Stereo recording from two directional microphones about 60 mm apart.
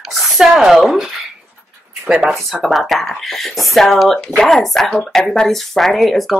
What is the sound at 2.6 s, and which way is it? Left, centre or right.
Speech, centre.